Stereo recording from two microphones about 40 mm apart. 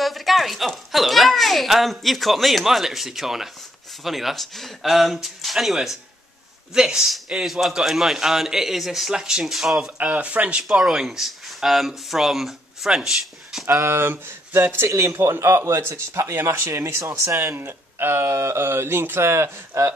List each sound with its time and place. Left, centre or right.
0.0 s a child's voice: centre
6.7 s speech: centre
7.4 s speech: centre
9.2 s speech: centre
9.5 s speech: centre
10.1 s speech: right
10.7 s speech: centre
13.9 s a man's voice: right
17.6 s speech: right